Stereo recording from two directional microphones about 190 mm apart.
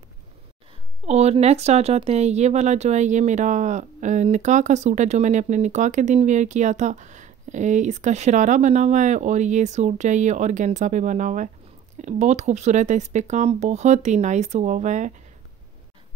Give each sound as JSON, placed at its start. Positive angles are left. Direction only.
{"t": 1.0, "sound": "speech", "side_deg": -35}